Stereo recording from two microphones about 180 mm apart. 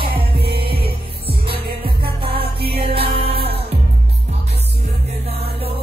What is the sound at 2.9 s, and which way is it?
Music, 30° right (ahead or behind).